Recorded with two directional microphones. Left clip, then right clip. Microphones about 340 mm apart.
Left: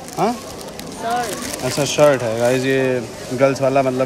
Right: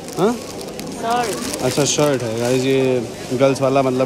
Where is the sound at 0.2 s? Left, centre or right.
Centre.